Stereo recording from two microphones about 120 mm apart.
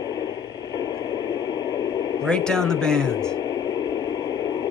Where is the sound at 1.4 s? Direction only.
35° left (ahead or behind).